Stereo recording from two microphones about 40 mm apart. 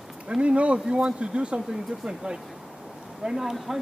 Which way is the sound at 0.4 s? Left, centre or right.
Right.